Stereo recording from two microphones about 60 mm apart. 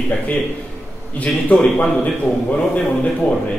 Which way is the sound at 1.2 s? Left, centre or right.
Left.